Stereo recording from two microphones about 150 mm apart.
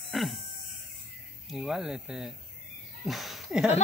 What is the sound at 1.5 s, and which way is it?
Speech, centre (ahead or behind).